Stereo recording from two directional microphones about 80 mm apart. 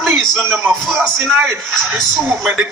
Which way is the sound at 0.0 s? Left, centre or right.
Centre.